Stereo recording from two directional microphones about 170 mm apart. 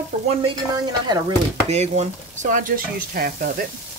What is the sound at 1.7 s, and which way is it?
Speech, 40° right (ahead or behind).